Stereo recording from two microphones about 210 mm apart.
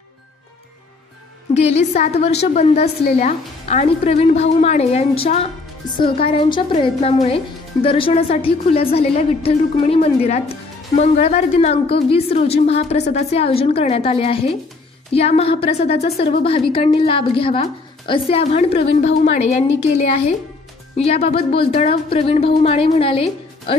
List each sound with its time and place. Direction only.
1.5 s a woman's voice: 30° left (ahead or behind)